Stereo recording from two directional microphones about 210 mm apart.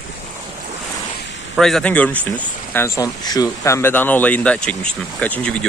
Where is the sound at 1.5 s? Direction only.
Centre (ahead or behind).